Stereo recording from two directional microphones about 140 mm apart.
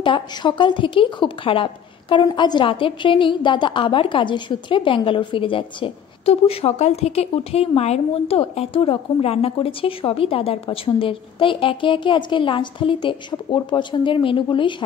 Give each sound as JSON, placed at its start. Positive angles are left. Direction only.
{"t": 0.0, "sound": "speech", "side_deg": 35}